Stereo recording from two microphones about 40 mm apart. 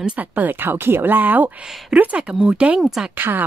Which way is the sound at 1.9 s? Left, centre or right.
Right.